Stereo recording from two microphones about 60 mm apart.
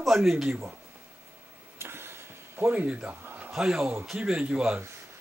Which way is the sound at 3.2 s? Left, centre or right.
Right.